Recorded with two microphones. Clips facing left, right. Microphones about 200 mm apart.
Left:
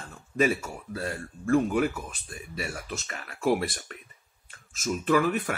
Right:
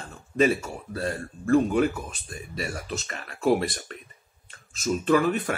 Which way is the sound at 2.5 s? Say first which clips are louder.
Right 3 dB; 35° right (ahead or behind).